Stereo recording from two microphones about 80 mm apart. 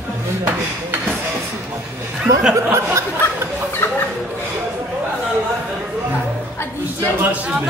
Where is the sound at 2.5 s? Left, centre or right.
Right.